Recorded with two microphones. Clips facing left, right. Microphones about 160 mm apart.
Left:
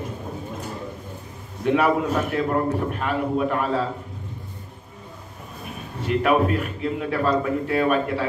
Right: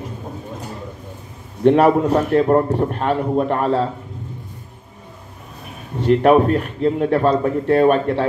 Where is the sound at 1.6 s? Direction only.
40° right (ahead or behind).